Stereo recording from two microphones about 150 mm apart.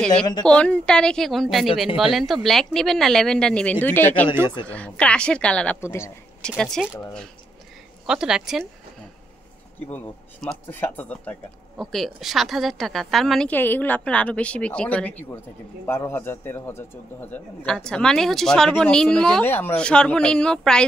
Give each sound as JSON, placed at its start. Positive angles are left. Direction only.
{"t": 0.4, "sound": "a man's voice", "side_deg": 5}
{"t": 5.8, "sound": "a woman's voice", "side_deg": 20}
{"t": 6.6, "sound": "a man's voice", "side_deg": 5}
{"t": 8.1, "sound": "a man's voice", "side_deg": -5}
{"t": 9.8, "sound": "a woman's voice", "side_deg": 5}